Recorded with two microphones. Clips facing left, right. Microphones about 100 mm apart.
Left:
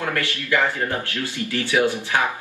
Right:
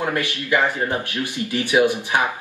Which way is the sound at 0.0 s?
15° right (ahead or behind).